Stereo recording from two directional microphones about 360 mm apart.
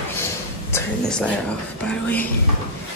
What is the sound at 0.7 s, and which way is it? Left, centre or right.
Speech, centre.